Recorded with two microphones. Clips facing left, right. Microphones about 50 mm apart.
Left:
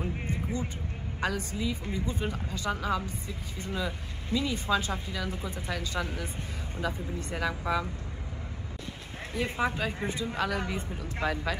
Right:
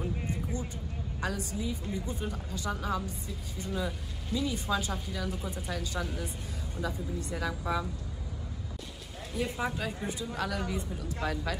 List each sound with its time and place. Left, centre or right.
0.0 s a woman's voice: left
9.3 s a woman's voice: left